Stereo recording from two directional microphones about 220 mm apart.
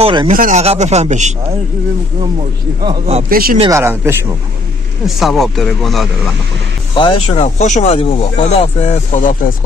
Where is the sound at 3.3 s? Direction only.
40° right (ahead or behind).